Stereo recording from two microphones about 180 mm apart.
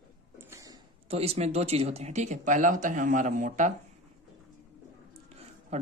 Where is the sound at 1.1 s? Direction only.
35° right (ahead or behind).